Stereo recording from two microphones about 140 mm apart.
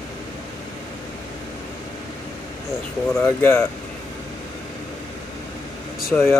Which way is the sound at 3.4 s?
20° left (ahead or behind).